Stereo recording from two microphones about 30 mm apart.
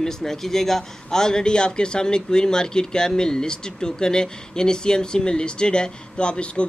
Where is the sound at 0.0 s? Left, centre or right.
Centre.